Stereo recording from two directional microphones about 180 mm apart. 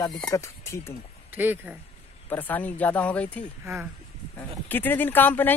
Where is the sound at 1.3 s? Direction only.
10° right (ahead or behind).